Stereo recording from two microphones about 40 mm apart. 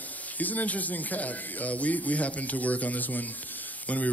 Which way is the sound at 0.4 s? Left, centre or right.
Left.